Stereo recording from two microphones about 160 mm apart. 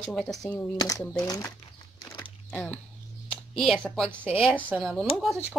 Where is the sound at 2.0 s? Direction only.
25° left (ahead or behind).